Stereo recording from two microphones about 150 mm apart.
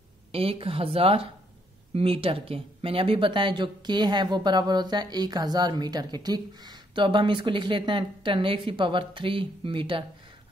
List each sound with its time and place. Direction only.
0.3 s speech: 40° right (ahead or behind)